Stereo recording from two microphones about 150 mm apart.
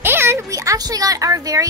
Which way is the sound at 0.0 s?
15° right (ahead or behind).